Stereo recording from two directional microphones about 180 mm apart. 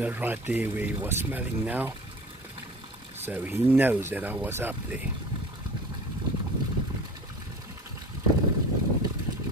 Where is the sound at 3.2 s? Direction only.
10° right (ahead or behind).